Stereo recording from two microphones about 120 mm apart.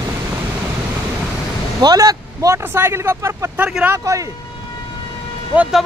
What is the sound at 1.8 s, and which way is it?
Speech, 35° right (ahead or behind).